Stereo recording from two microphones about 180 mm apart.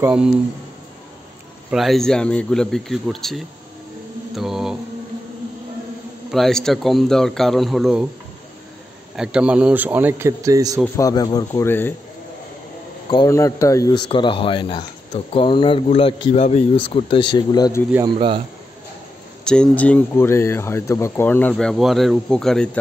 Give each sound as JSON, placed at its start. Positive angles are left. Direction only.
{"t": 0.0, "sound": "speech", "side_deg": -5}
{"t": 1.7, "sound": "speech", "side_deg": 0}
{"t": 4.4, "sound": "mantra", "side_deg": 0}
{"t": 6.3, "sound": "speech", "side_deg": 0}
{"t": 9.1, "sound": "speech", "side_deg": -5}
{"t": 11.0, "sound": "speech", "side_deg": 20}
{"t": 13.1, "sound": "speech", "side_deg": 20}
{"t": 18.0, "sound": "speech", "side_deg": -30}
{"t": 19.4, "sound": "speech", "side_deg": 5}